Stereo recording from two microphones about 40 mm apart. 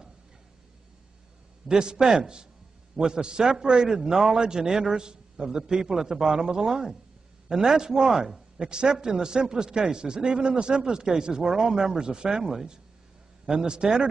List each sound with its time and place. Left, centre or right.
1.7 s a man's voice: centre